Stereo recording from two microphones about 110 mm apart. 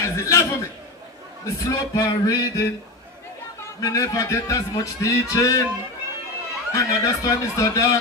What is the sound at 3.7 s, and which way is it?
A man's voice, 30° left (ahead or behind).